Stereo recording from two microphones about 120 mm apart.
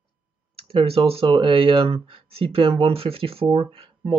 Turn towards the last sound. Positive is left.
turn(degrees=-50)  # may be behind; listen again after turning